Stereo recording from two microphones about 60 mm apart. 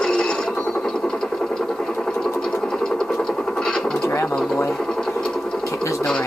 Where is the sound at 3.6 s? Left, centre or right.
Centre.